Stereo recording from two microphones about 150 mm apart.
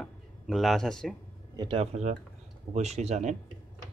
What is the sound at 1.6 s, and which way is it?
A man's voice, 35° right (ahead or behind).